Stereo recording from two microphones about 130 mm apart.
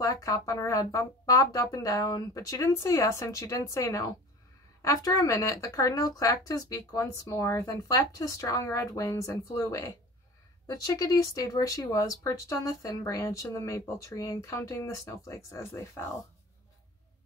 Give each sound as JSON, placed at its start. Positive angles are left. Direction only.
{"t": 0.0, "sound": "speech", "side_deg": 25}